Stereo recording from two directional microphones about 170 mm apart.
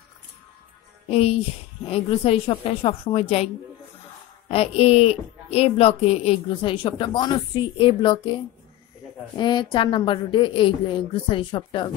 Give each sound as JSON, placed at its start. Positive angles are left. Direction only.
{"t": 1.0, "sound": "a woman's voice", "side_deg": 35}
{"t": 4.5, "sound": "a woman's voice", "side_deg": 35}
{"t": 9.4, "sound": "a woman's voice", "side_deg": 30}